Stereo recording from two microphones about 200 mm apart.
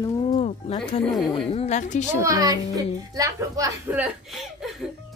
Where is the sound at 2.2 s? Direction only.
15° right (ahead or behind).